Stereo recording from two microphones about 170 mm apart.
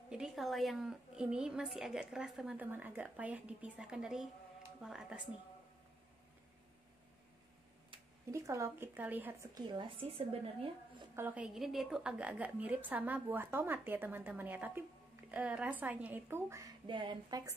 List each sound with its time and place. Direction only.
0.1 s a woman's voice: centre (ahead or behind)
8.3 s a woman's voice: 20° right (ahead or behind)
9.7 s a woman's voice: 30° right (ahead or behind)
11.1 s a woman's voice: 10° right (ahead or behind)
16.8 s speech: 30° right (ahead or behind)